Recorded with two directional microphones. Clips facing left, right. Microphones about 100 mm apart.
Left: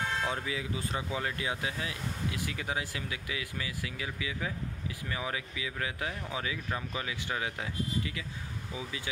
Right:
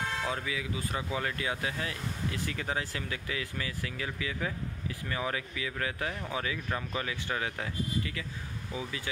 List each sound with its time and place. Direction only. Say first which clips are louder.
0.3 s speech: even; 30° left (ahead or behind)